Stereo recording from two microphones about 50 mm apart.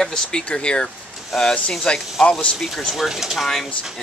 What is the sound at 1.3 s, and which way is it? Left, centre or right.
Speech, centre.